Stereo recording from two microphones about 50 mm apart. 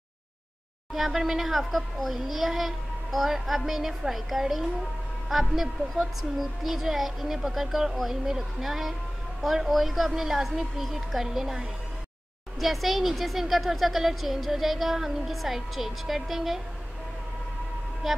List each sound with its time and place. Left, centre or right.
0.9 s speech: centre